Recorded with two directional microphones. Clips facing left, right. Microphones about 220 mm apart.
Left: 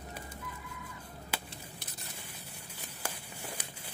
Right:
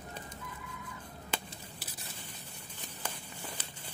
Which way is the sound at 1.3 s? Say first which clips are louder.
Right 2 dB; 5° left (ahead or behind).